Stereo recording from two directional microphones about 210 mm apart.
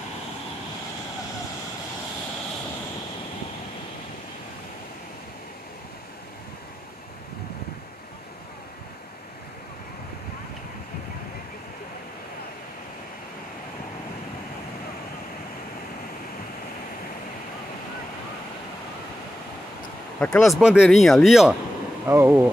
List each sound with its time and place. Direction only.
20.2 s speech: 5° left (ahead or behind)